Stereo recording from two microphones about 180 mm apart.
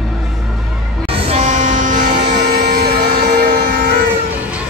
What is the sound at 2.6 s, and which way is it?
Music, 60° right (ahead or behind).